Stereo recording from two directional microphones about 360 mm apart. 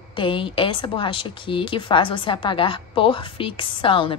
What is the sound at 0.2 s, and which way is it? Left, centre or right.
A woman's voice, centre.